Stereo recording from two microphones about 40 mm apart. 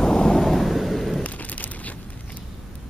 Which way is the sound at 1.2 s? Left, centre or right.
Left.